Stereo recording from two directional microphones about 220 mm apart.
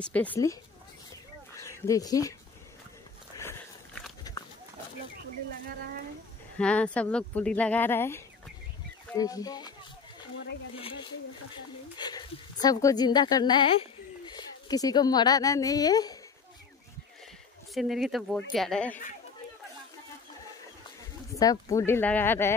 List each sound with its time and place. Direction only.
0.0 s speech: 5° left (ahead or behind)
1.6 s speech: 15° left (ahead or behind)
3.3 s walk: 10° left (ahead or behind)
6.6 s speech: 5° left (ahead or behind); by 11.0 s 25° left (ahead or behind)
12.0 s a woman's voice: 20° left (ahead or behind)
17.7 s speech: centre (ahead or behind)
21.3 s speech: 15° left (ahead or behind)